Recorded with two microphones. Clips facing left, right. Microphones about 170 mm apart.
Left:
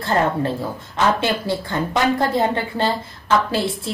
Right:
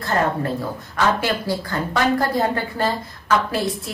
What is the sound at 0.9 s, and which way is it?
Speech, 25° left (ahead or behind).